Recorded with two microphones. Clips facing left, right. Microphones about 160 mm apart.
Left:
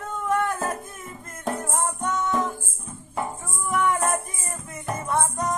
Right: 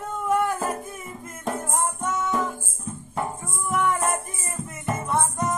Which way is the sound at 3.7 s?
Centre (ahead or behind).